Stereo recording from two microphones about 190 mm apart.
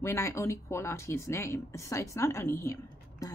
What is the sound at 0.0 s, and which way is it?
A woman's voice, 15° left (ahead or behind).